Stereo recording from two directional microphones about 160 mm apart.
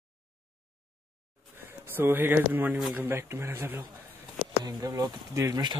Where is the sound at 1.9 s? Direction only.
15° right (ahead or behind).